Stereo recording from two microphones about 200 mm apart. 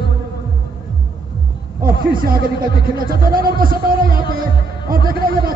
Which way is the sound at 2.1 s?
45° right (ahead or behind).